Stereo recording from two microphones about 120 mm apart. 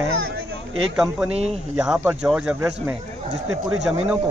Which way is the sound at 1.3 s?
60° right (ahead or behind).